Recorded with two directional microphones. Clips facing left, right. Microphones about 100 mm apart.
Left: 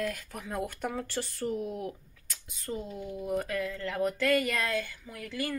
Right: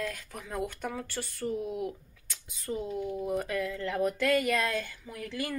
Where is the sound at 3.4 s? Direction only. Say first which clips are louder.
Right 1 dB; 15° right (ahead or behind).